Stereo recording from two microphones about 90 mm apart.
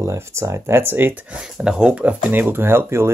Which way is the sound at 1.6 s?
5° right (ahead or behind).